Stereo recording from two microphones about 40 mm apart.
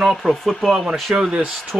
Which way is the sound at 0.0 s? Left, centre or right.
Centre.